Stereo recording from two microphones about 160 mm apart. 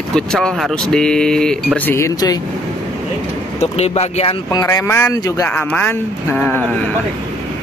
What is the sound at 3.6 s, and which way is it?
Speech, 40° left (ahead or behind).